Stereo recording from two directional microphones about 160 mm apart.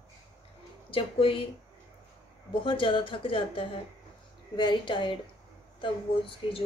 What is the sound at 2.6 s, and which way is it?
A woman's voice, 30° left (ahead or behind).